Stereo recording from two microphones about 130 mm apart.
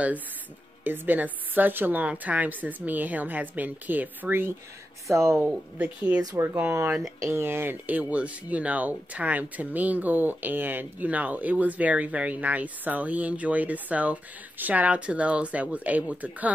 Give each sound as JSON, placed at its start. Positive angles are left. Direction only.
{"t": 0.8, "sound": "speech", "side_deg": -15}
{"t": 5.4, "sound": "speech", "side_deg": -10}